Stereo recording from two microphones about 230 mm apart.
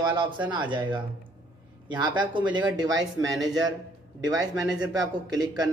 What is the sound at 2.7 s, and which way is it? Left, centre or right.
Speech, centre.